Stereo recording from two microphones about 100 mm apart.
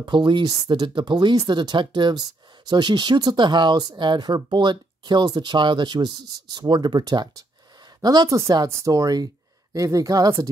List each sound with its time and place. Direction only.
0.0 s speech: 50° right (ahead or behind)